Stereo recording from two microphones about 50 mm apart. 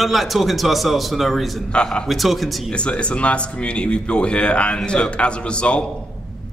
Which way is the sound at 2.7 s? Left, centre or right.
Left.